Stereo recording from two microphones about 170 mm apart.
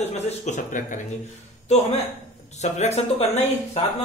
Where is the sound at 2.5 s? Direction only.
40° left (ahead or behind).